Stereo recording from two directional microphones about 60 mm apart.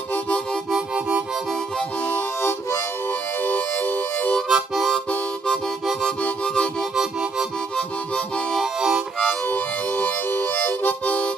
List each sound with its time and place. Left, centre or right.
2.0 s harmonica: left
3.4 s harmonica: left
4.5 s harmonica: centre
6.2 s music: centre
9.3 s harmonica: left